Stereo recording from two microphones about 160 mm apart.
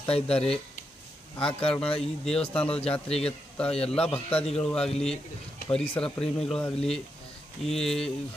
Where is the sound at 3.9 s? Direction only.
35° left (ahead or behind).